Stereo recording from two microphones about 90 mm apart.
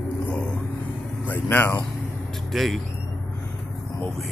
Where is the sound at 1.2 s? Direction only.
20° left (ahead or behind).